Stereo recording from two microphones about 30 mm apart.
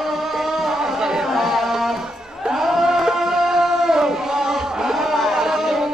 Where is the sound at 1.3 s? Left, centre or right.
Centre.